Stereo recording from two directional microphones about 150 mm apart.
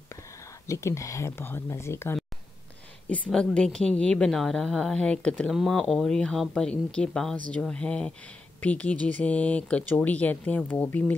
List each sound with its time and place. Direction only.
0.7 s speech: 20° left (ahead or behind)
3.1 s a woman's voice: 5° left (ahead or behind)